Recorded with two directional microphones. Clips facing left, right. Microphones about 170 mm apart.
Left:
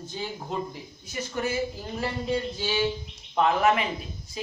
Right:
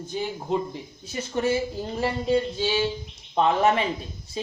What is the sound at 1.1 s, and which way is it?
Speech, 30° right (ahead or behind).